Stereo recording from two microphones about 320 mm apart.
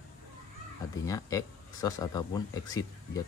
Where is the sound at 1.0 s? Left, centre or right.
Centre.